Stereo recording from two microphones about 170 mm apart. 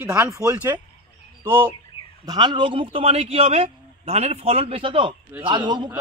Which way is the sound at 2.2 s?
25° right (ahead or behind).